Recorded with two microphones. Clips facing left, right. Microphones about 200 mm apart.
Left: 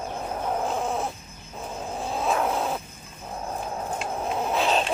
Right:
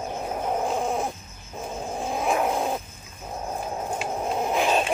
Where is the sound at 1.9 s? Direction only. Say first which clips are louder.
Right 1 dB; 15° right (ahead or behind).